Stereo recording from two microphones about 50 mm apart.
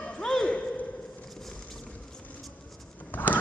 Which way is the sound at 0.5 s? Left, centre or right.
Left.